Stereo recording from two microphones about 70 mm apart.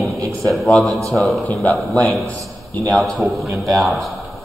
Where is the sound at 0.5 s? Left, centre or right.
Centre.